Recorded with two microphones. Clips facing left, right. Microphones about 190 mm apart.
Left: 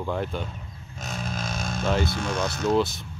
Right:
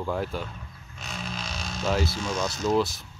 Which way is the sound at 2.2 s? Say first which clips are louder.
Left 2 dB; 60° left (ahead or behind).